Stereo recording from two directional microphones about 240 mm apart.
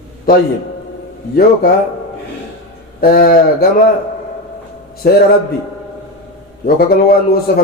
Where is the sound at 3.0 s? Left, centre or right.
Left.